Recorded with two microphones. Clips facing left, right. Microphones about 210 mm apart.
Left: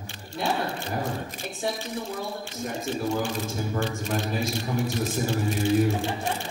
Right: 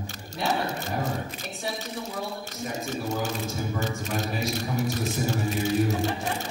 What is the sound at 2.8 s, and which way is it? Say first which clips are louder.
A man's voice: left 3 dB; 45° right (ahead or behind).